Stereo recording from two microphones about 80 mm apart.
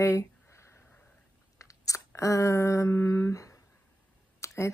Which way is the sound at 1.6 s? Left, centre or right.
Left.